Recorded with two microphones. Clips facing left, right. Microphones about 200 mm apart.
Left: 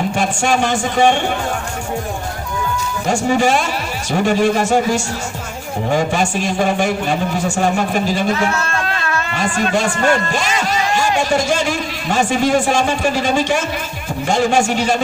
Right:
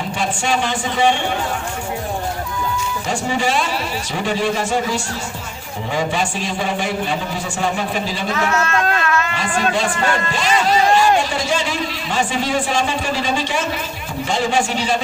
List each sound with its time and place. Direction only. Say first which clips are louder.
0.1 s speech: left 3 dB; 45° left (ahead or behind)
3.1 s speech: left 6 dB; 45° left (ahead or behind)
8.5 s speech: right 2 dB; 30° left (ahead or behind)
9.3 s a man's voice: left 2 dB; 45° left (ahead or behind)